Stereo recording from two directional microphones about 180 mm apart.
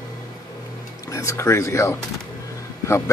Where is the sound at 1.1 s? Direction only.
15° left (ahead or behind).